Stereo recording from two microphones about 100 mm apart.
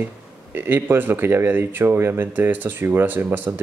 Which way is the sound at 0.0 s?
20° right (ahead or behind).